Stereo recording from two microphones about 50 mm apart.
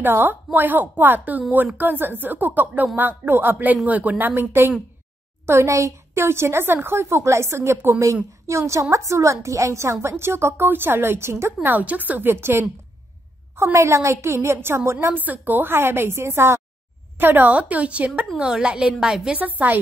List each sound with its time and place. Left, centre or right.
0.0 s a woman's voice: right
3.5 s a woman's voice: right
5.5 s speech: right
6.2 s a woman's voice: right
8.5 s a woman's voice: right
11.6 s a woman's voice: right
13.7 s a woman's voice: right
15.0 s a woman's voice: right
17.2 s a woman's voice: right; by 19.3 s centre
19.6 s a woman's voice: right